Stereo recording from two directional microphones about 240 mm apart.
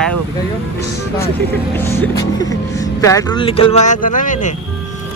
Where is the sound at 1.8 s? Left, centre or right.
Centre.